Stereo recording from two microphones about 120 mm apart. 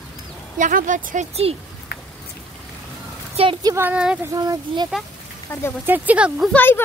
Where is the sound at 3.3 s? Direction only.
50° right (ahead or behind).